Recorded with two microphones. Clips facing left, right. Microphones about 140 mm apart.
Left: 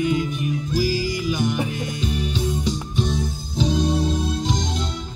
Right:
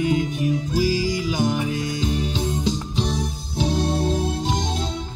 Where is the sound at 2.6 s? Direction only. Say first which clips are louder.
Even; 90° right.